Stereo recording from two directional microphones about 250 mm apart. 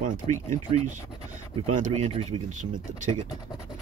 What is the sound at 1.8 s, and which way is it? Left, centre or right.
Speech, right.